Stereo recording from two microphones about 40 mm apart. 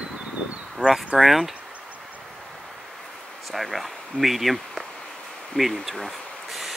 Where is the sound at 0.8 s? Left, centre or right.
Left.